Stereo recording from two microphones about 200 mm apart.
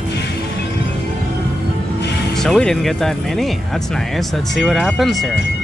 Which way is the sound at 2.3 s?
Centre (ahead or behind).